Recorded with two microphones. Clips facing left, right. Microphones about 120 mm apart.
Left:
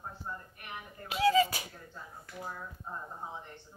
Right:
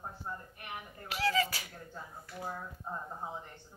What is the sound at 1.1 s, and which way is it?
Beatboxing, 20° left (ahead or behind).